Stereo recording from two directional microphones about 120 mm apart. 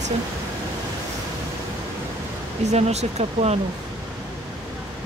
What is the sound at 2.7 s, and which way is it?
Speech, 65° right (ahead or behind).